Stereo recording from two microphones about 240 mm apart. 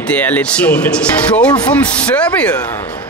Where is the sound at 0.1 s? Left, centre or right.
Centre.